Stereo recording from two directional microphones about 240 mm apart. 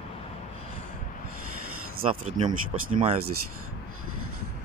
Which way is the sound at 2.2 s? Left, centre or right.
Right.